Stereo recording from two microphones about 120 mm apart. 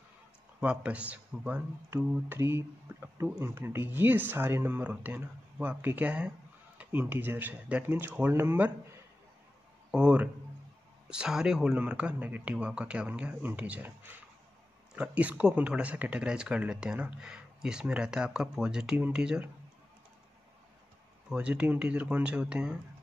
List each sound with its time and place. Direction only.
0.6 s speech: 10° right (ahead or behind)
9.8 s speech: 10° right (ahead or behind)
21.3 s speech: 10° right (ahead or behind)